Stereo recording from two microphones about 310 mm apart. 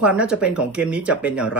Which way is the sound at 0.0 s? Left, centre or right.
Centre.